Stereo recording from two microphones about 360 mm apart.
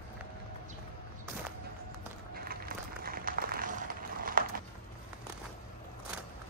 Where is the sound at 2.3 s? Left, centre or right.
Right.